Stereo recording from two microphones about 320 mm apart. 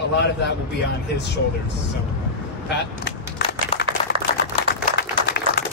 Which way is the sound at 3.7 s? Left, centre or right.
Centre.